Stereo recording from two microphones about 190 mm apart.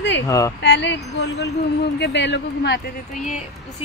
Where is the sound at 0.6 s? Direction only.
65° left (ahead or behind).